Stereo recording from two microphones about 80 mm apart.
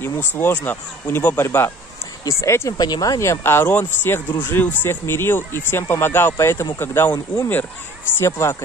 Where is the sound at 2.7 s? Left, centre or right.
Left.